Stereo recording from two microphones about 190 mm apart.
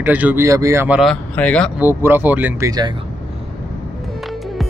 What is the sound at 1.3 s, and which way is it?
Speech, 5° left (ahead or behind).